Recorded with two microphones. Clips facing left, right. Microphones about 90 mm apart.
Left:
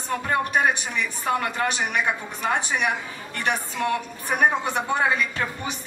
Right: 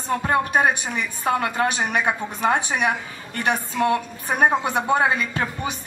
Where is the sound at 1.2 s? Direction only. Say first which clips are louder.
Right 4 dB; 25° right (ahead or behind).